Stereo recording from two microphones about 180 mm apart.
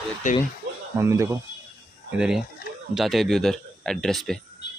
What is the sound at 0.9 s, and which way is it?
Speech, 15° right (ahead or behind).